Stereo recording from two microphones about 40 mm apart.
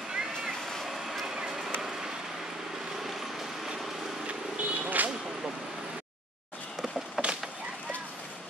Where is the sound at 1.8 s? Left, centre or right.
Centre.